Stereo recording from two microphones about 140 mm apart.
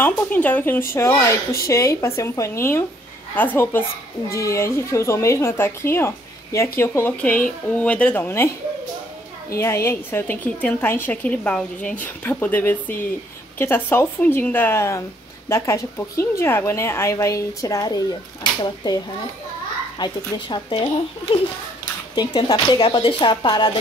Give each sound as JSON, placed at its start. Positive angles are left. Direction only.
{"t": 0.0, "sound": "a woman's voice", "side_deg": 10}
{"t": 9.6, "sound": "a woman's voice", "side_deg": 20}